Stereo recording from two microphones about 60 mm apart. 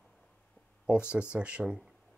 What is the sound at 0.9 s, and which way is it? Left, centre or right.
Speech, centre.